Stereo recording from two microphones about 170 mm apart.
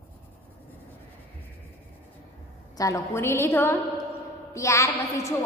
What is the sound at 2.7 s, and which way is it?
A woman's voice, 20° left (ahead or behind).